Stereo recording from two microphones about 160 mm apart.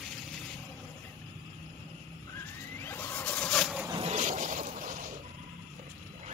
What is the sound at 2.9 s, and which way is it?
Vehicle, 10° left (ahead or behind).